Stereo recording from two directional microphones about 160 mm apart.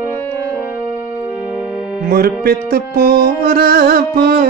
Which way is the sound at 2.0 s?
70° right (ahead or behind).